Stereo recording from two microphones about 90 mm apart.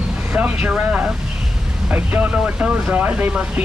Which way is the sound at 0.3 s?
15° right (ahead or behind).